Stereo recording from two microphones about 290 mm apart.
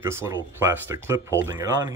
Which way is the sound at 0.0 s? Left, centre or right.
Centre.